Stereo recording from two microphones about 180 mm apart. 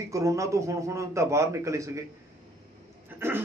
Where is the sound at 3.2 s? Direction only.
10° right (ahead or behind).